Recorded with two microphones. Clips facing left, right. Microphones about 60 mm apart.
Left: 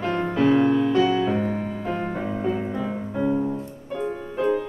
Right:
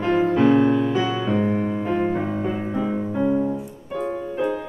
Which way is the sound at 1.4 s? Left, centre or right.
Right.